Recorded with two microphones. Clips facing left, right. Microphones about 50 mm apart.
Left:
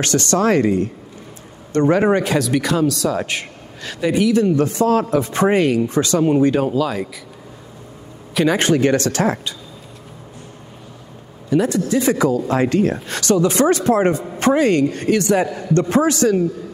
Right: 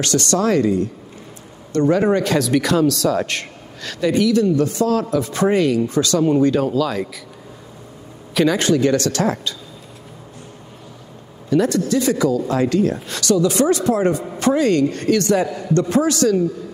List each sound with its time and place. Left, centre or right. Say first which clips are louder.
0.0 s a man's voice: left 1 dB; left
2.3 s a man's voice: right 1 dB; centre
8.5 s a man's voice: left 2 dB; left
11.5 s speech: even; centre
11.9 s speech: left 1 dB; left
14.7 s speech: even; centre
15.7 s a man's voice: left 1 dB; left